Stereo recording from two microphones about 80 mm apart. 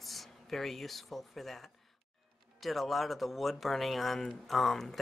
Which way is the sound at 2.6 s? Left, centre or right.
Centre.